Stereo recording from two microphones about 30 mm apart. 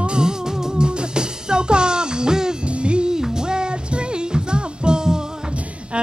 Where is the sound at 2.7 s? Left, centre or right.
Right.